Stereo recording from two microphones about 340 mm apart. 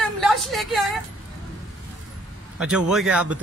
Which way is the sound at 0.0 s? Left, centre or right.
Centre.